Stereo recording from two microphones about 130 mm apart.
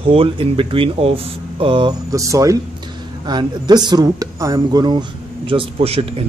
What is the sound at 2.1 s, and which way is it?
Speech, 25° right (ahead or behind).